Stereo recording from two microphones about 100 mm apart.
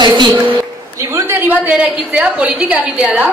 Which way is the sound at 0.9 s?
25° right (ahead or behind).